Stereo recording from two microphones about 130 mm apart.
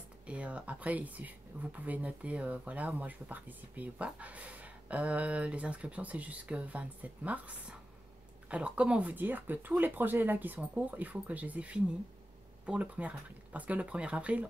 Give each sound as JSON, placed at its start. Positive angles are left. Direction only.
{"t": 0.3, "sound": "speech", "side_deg": -10}